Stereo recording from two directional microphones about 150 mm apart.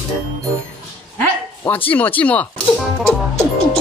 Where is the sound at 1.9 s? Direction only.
10° left (ahead or behind).